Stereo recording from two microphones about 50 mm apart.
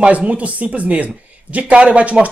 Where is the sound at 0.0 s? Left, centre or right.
Right.